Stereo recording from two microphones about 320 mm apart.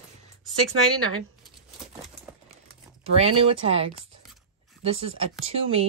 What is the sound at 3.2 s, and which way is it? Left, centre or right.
Speech, centre.